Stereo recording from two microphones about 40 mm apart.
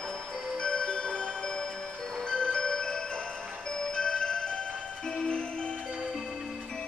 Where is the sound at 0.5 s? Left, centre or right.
Centre.